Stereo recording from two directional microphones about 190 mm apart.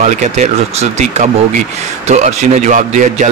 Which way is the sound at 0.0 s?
40° right (ahead or behind).